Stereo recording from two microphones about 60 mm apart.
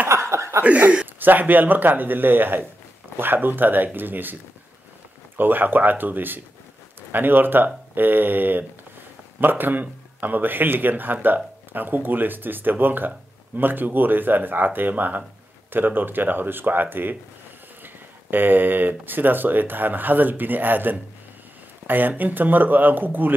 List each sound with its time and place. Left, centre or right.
0.0 s chuckle: right
0.7 s speech: right
5.4 s speech: right